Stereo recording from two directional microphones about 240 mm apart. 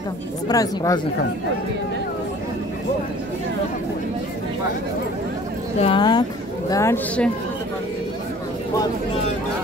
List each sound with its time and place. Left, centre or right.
0.5 s speech: centre
5.8 s speech: left